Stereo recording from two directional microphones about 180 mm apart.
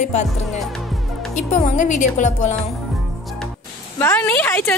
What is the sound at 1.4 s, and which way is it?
Speech, 45° left (ahead or behind).